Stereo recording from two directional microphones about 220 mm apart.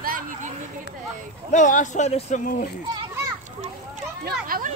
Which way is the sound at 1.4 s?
35° left (ahead or behind).